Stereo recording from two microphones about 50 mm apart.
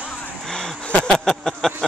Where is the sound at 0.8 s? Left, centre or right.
Centre.